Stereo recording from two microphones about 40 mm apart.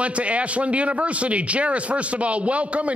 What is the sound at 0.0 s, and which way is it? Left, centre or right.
Speech, right.